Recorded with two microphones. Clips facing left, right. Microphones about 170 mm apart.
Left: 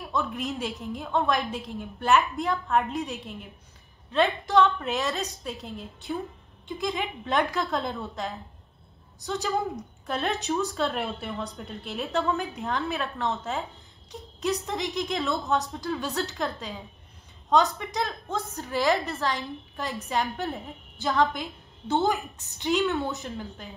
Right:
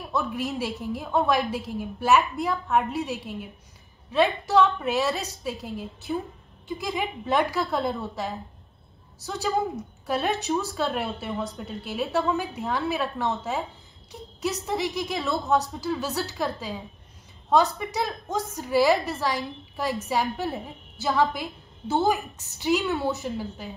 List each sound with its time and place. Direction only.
0.1 s a woman's voice: 5° right (ahead or behind)
17.7 s a woman's voice: 5° right (ahead or behind)
22.9 s speech: 35° right (ahead or behind)
23.2 s a woman's voice: 5° right (ahead or behind)